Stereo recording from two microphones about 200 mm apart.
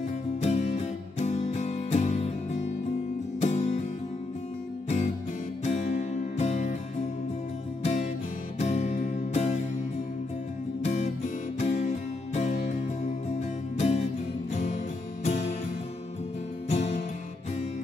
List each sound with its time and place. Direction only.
0.4 s music: 35° left (ahead or behind)
4.8 s music: 35° left (ahead or behind)
7.8 s music: 35° left (ahead or behind)
10.8 s music: 35° left (ahead or behind)
16.6 s music: 35° left (ahead or behind)